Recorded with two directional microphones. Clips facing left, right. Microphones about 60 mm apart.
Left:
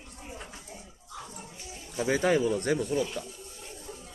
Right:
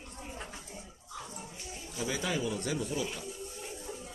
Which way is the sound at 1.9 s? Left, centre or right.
Left.